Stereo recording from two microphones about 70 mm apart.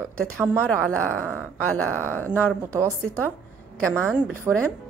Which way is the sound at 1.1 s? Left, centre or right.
Right.